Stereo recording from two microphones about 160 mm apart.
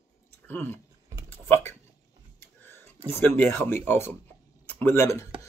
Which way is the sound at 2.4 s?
15° left (ahead or behind).